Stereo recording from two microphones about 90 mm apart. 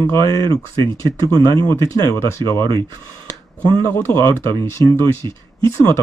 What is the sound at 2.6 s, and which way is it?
Speech, 60° right (ahead or behind).